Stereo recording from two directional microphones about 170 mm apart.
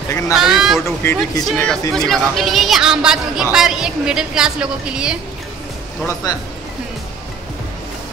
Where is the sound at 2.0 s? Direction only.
Centre (ahead or behind).